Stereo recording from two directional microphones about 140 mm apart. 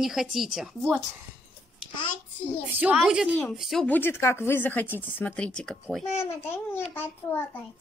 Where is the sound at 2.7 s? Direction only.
10° right (ahead or behind).